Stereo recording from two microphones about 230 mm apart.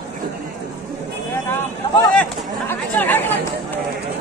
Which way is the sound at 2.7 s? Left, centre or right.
Centre.